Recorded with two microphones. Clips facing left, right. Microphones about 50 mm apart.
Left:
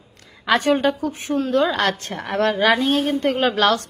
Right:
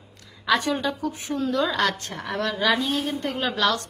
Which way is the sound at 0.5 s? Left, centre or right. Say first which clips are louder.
Left 5 dB; left.